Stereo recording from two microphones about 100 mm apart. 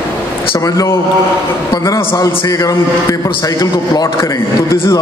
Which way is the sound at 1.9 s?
35° left (ahead or behind).